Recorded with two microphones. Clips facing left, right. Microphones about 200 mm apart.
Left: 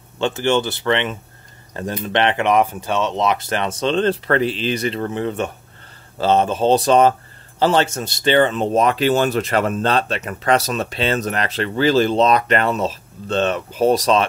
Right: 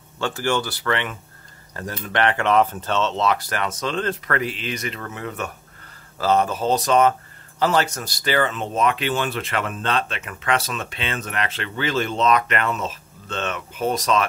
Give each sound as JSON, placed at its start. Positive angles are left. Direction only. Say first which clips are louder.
{"t": 0.2, "sound": "speech", "louder": "left 5 dB", "side_deg": 20}